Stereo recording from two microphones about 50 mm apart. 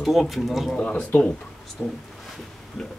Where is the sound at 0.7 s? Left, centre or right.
Left.